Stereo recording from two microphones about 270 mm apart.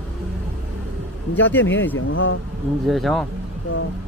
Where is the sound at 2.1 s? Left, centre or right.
Left.